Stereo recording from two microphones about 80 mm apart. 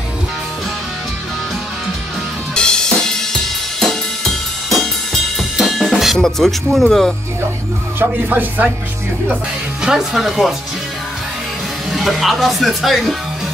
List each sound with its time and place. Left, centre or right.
2.5 s drum kit: centre
8.0 s speech: right
9.3 s speech: centre
11.9 s speech: centre